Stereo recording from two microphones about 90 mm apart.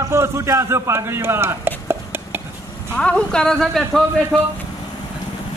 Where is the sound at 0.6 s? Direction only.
30° right (ahead or behind).